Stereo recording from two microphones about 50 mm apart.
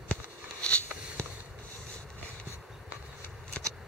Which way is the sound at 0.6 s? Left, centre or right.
Left.